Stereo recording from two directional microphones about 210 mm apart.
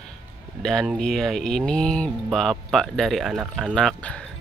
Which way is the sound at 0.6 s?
Centre (ahead or behind).